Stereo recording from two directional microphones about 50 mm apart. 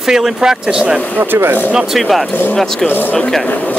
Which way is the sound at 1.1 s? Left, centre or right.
Right.